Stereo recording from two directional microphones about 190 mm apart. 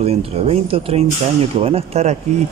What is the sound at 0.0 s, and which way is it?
Speech, 30° right (ahead or behind).